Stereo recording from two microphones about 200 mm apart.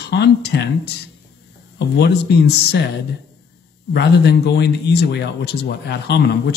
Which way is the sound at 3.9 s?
55° left (ahead or behind).